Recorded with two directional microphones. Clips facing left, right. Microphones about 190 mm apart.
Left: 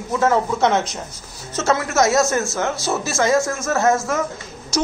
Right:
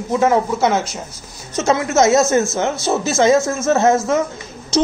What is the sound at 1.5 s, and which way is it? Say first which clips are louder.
A woman's voice: right 3 dB; 20° right (ahead or behind).